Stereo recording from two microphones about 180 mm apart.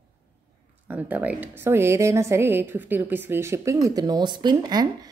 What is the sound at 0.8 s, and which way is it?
Speech, 10° right (ahead or behind).